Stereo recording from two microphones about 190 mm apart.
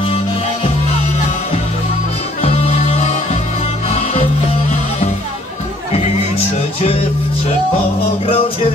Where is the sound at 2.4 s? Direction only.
35° left (ahead or behind).